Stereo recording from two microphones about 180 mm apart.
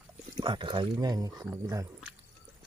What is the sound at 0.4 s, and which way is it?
Speech, 25° right (ahead or behind).